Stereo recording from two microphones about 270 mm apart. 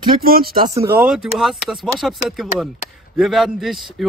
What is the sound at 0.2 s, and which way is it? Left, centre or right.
Speech, right.